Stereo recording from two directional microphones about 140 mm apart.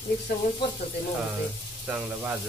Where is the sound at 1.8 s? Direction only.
10° right (ahead or behind).